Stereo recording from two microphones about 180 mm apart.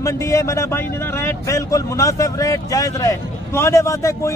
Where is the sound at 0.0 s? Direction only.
15° left (ahead or behind).